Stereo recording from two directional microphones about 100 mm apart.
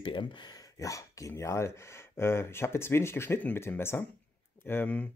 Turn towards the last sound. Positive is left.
turn(degrees=15)  # may be behind; listen again after turning